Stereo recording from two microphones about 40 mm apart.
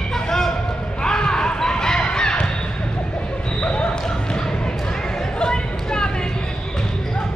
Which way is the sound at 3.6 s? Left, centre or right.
Left.